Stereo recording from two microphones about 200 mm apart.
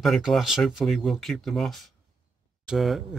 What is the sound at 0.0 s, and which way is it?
Speech, centre (ahead or behind).